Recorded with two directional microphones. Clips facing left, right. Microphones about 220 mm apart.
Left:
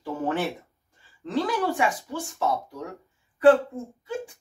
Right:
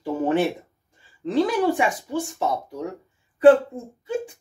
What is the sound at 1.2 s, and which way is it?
Speech, 20° right (ahead or behind).